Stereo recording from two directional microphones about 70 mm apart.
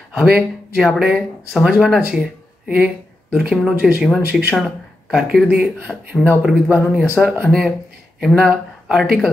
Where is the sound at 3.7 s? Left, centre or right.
Right.